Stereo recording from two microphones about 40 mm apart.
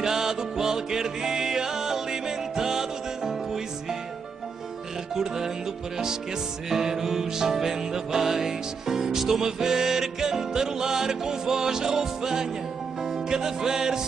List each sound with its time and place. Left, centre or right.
0.0 s music: centre
5.1 s music: centre
6.7 s music: centre